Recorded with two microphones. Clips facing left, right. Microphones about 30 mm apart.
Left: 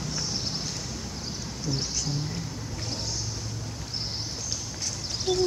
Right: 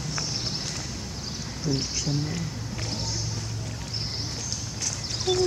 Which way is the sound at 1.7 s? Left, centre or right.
Right.